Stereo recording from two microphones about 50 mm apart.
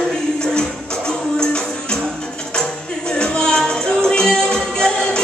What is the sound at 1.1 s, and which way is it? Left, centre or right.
Music, centre.